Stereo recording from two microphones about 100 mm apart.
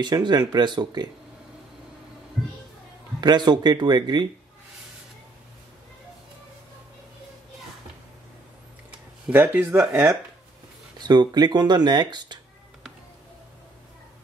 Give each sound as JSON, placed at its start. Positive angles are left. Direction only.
{"t": 0.0, "sound": "speech", "side_deg": -45}
{"t": 3.2, "sound": "speech", "side_deg": -45}
{"t": 9.3, "sound": "speech", "side_deg": -20}
{"t": 11.0, "sound": "speech", "side_deg": -45}